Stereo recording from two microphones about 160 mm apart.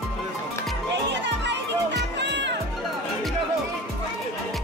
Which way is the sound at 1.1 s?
90° right.